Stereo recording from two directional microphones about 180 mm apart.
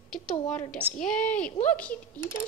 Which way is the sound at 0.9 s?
5° left (ahead or behind).